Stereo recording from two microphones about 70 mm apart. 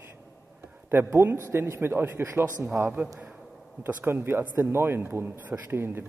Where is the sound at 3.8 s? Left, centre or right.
Right.